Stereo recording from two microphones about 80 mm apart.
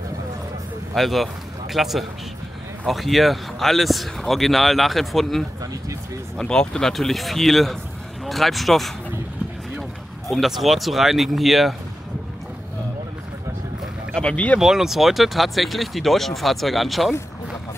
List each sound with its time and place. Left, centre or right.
0.9 s speech: centre
5.6 s speech: right
6.3 s speech: centre
14.1 s speech: centre
14.6 s speech: centre